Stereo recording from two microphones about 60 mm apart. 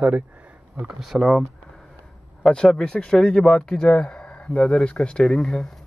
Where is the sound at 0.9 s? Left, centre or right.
Centre.